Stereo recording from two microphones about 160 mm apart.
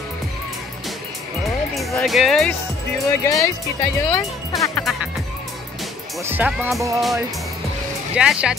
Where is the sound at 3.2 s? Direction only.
20° left (ahead or behind).